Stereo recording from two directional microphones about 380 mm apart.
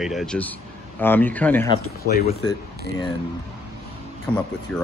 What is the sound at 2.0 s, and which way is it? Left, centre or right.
Speech, left.